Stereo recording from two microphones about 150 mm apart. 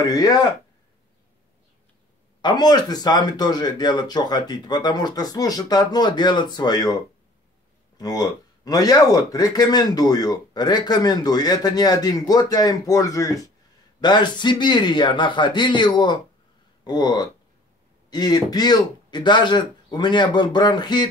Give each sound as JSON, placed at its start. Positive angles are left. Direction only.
{"t": 0.0, "sound": "speech", "side_deg": 25}
{"t": 2.4, "sound": "speech", "side_deg": 30}
{"t": 8.0, "sound": "speech", "side_deg": 25}